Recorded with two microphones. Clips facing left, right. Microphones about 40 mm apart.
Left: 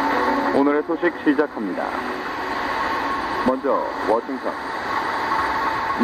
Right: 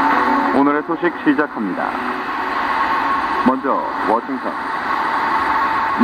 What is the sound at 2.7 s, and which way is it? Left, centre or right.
Radio, centre.